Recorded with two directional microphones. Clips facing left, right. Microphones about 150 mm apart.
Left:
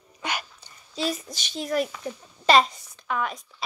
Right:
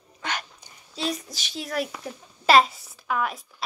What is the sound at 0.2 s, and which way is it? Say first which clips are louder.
Dog: left 1 dB; 10° left (ahead or behind).